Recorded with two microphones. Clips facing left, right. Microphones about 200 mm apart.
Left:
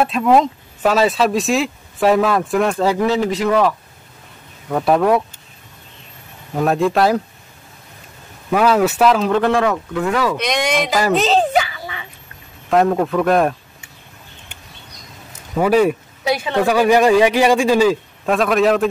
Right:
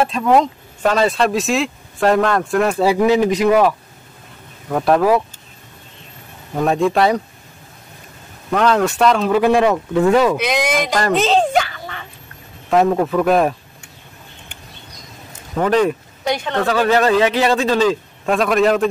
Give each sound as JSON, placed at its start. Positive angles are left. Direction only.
{"t": 0.0, "sound": "speech", "side_deg": 5}
{"t": 4.6, "sound": "speech", "side_deg": 0}
{"t": 6.5, "sound": "speech", "side_deg": 0}
{"t": 8.5, "sound": "speech", "side_deg": 5}
{"t": 9.9, "sound": "speech", "side_deg": -25}
{"t": 10.3, "sound": "speech", "side_deg": -5}
{"t": 15.5, "sound": "speech", "side_deg": 10}